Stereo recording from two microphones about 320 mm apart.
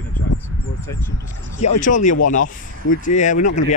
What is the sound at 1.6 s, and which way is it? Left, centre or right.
Speech, left.